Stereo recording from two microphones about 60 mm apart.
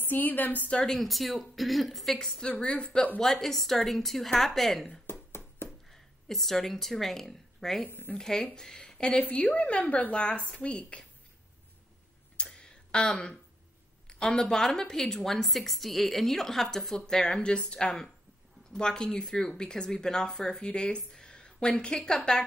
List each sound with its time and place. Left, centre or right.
0.0 s a woman's voice: left
0.7 s a woman's voice: centre
0.9 s a woman's voice: centre
3.2 s a woman's voice: centre
7.8 s a woman's voice: left
8.1 s a woman's voice: centre
9.2 s a woman's voice: left
12.4 s a sound: centre
14.0 s a woman's voice: centre